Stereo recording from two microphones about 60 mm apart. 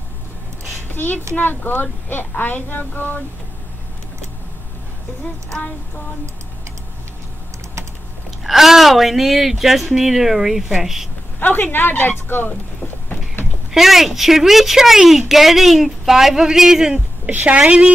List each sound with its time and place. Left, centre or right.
0.9 s a woman's voice: left
8.5 s a woman's voice: centre
11.3 s speech: left
13.7 s a woman's voice: centre
17.3 s a woman's voice: right